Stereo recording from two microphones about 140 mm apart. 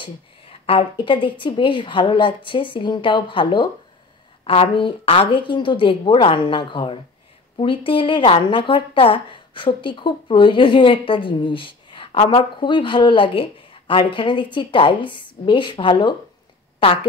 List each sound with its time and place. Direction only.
0.0 s speech: 40° left (ahead or behind)